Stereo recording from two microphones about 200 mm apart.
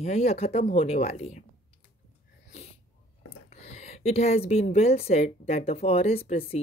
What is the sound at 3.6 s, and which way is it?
Speech, 35° left (ahead or behind).